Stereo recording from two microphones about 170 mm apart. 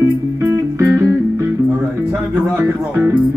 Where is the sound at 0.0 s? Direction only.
15° right (ahead or behind).